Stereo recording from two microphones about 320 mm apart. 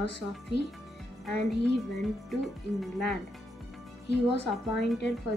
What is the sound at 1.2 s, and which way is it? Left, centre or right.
Speech, centre.